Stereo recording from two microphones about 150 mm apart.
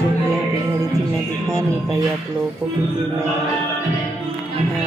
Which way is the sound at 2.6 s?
5° right (ahead or behind).